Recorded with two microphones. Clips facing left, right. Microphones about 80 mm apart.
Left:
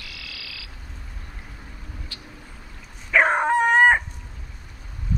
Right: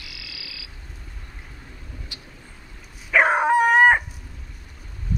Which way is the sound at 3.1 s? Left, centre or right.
Centre.